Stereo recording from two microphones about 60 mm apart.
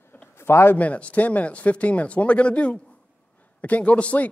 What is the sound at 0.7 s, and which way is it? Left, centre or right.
A man's voice, left.